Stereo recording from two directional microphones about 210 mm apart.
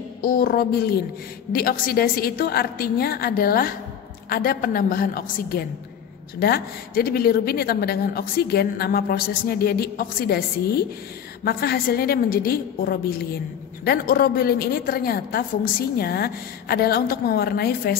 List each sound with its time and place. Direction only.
0.2 s speech: 45° left (ahead or behind)